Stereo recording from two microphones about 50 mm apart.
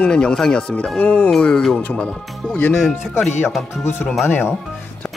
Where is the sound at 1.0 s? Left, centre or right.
Left.